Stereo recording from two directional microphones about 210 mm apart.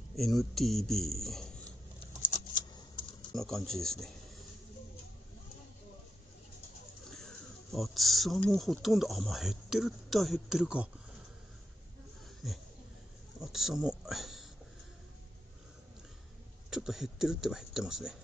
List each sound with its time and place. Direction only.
0.1 s speech: centre (ahead or behind)
2.2 s a sound: 40° left (ahead or behind)
2.7 s a sound: 20° left (ahead or behind)
3.3 s speech: centre (ahead or behind)
7.7 s speech: centre (ahead or behind)
13.4 s speech: centre (ahead or behind)
16.7 s speech: centre (ahead or behind)